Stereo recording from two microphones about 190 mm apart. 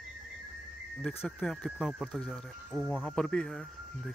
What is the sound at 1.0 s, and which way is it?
Speech, centre (ahead or behind).